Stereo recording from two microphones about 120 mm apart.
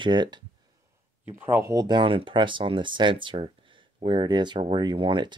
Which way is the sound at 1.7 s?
35° right (ahead or behind).